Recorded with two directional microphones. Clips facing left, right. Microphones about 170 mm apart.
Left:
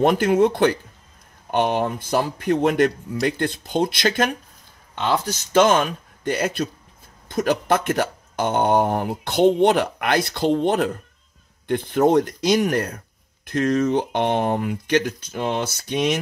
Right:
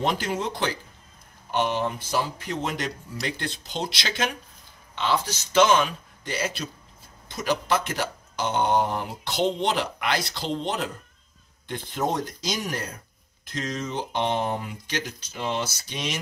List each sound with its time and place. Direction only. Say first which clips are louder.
0.0 s speech: left 10 dB; 55° left (ahead or behind)